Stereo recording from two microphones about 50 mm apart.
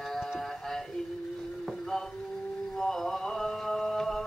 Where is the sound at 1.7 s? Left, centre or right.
Centre.